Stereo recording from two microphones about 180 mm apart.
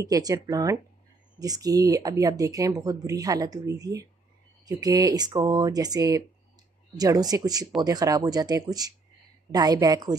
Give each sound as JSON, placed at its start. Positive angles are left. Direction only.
{"t": 0.0, "sound": "speech", "side_deg": -20}